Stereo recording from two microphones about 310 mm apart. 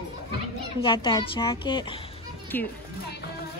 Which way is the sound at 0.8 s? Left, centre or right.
Centre.